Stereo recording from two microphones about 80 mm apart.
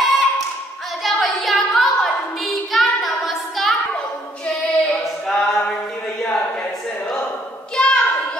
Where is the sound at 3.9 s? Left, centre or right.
Centre.